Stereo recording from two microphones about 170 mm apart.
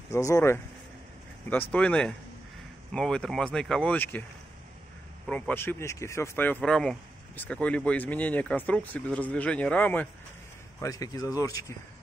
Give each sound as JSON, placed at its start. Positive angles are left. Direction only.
{"t": 0.1, "sound": "speech", "side_deg": 15}
{"t": 5.2, "sound": "speech", "side_deg": 10}
{"t": 10.8, "sound": "speech", "side_deg": 20}